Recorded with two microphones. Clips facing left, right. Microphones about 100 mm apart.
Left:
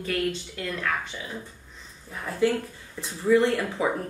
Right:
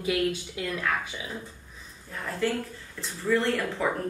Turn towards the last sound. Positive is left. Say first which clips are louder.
# left 3 dB
turn(degrees=15)  # may be behind; listen again after turning